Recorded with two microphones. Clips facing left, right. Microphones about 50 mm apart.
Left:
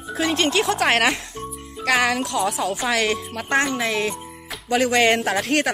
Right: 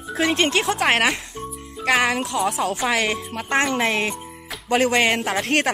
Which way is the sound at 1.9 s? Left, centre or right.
Right.